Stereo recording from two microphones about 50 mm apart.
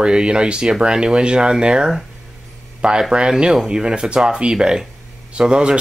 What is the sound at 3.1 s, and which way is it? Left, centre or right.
Speech, centre.